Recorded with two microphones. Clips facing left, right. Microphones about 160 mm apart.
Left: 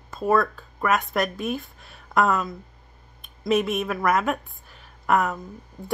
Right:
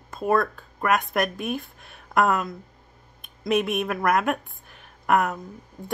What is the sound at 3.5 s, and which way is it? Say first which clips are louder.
Speech: left 1 dB; 60° right (ahead or behind).